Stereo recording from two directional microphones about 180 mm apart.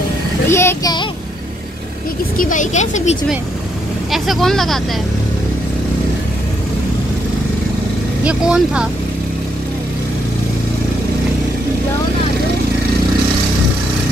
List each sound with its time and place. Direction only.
0.5 s a child's voice: 15° left (ahead or behind)
2.3 s speech: 50° left (ahead or behind)
4.1 s speech: centre (ahead or behind)
8.2 s speech: 5° right (ahead or behind)